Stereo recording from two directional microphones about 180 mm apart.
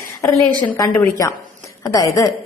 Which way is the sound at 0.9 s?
15° left (ahead or behind).